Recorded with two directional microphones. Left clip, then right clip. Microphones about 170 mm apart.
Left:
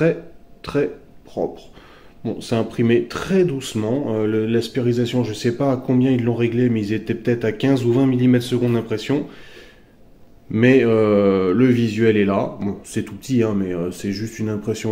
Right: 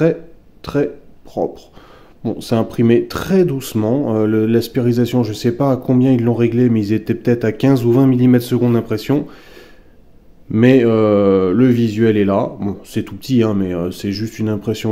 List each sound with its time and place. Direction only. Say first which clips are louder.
0.6 s speech: right 3 dB; 40° right (ahead or behind)
1.4 s mantra: right 4 dB; 40° right (ahead or behind)
2.2 s speech: right 4 dB; 50° right (ahead or behind)
10.5 s mantra: right 3 dB; 45° right (ahead or behind)
12.9 s mantra: right 4 dB; 30° right (ahead or behind)